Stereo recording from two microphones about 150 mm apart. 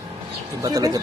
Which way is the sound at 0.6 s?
25° right (ahead or behind).